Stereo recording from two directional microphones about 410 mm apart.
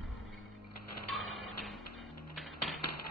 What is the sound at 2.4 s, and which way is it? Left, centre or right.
Typewriter, centre.